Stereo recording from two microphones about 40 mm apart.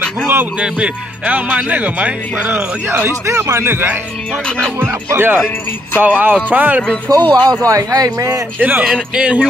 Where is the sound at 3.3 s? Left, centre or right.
Right.